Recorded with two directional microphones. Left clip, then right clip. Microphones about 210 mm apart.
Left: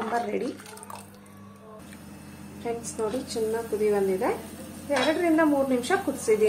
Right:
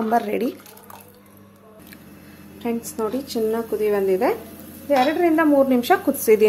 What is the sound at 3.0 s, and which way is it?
Speech, 40° right (ahead or behind).